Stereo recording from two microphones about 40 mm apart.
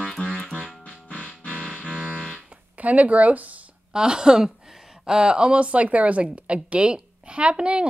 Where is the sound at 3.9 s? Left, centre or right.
Centre.